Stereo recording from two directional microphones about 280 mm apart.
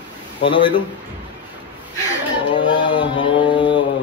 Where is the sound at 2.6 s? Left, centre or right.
Centre.